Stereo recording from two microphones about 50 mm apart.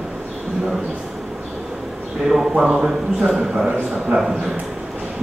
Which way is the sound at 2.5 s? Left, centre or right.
Centre.